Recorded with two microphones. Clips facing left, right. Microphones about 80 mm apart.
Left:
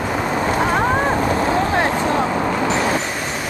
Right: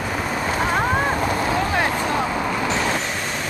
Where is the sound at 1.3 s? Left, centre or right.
Left.